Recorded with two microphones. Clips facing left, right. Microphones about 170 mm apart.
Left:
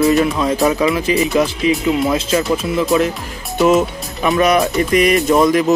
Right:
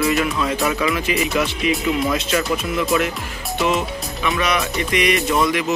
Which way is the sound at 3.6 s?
45° left (ahead or behind).